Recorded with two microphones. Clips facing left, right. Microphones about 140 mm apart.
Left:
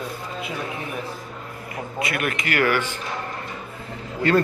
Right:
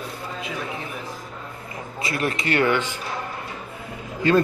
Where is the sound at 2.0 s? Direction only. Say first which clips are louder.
Right 3 dB; 30° right (ahead or behind).